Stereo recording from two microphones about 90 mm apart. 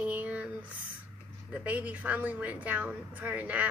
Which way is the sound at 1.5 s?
15° right (ahead or behind).